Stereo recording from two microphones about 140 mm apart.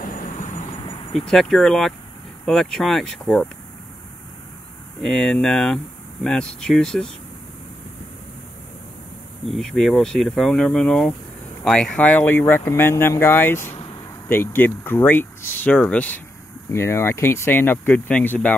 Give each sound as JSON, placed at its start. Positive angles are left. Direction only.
{"t": 0.0, "sound": "vehicle", "side_deg": 75}
{"t": 1.1, "sound": "speech", "side_deg": 0}
{"t": 5.0, "sound": "speech", "side_deg": 5}
{"t": 9.5, "sound": "speech", "side_deg": 0}